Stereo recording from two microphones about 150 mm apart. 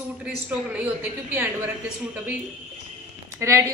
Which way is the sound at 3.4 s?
15° right (ahead or behind).